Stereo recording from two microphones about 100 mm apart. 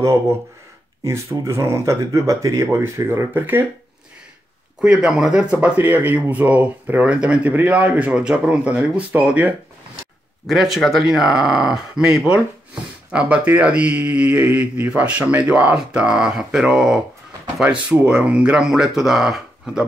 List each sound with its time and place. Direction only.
0.0 s speech: 25° right (ahead or behind)
4.8 s speech: 10° right (ahead or behind)
10.4 s speech: centre (ahead or behind)